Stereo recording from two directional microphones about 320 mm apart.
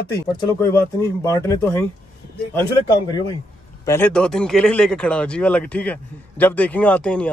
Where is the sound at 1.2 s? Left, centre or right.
Centre.